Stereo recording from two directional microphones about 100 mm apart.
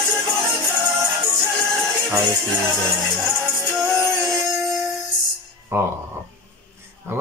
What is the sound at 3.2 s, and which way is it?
Music, centre (ahead or behind).